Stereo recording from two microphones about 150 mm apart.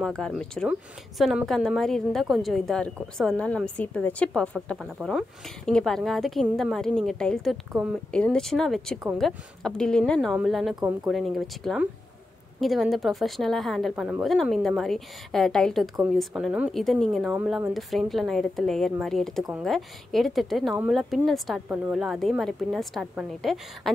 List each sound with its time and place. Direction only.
0.0 s a woman's voice: 5° left (ahead or behind)
21.6 s a woman's voice: 15° right (ahead or behind)
21.9 s a woman's voice: centre (ahead or behind)